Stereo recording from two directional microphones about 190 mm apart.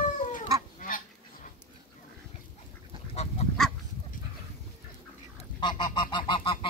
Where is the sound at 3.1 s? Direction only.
35° left (ahead or behind).